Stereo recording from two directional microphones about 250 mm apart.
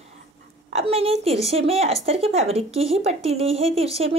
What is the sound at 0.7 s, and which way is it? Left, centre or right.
A woman's voice, right.